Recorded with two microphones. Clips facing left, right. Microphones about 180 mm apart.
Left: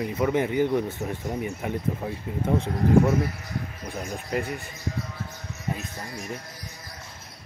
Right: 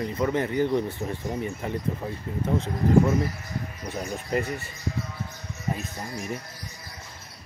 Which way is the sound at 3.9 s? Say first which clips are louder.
Right 2 dB; 5° left (ahead or behind).